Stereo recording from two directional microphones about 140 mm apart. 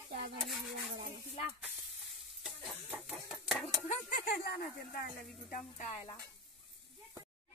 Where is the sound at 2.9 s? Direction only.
5° right (ahead or behind).